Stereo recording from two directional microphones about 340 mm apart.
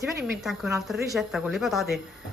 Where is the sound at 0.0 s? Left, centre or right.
Centre.